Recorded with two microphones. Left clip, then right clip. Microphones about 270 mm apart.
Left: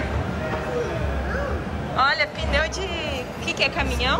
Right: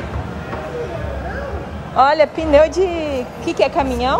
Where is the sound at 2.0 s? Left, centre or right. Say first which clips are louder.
Right 8 dB; centre.